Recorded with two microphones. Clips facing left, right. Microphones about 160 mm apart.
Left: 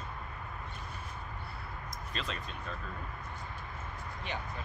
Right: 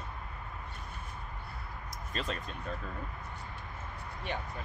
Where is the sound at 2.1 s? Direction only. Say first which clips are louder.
Right 3 dB; 45° right (ahead or behind).